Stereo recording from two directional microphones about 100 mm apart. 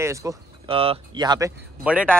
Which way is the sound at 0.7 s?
70° right (ahead or behind).